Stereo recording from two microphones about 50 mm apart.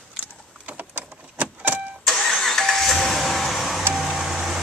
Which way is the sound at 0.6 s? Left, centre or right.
Right.